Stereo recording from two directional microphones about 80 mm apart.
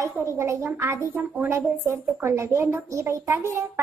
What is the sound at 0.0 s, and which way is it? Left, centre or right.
A woman's voice, right.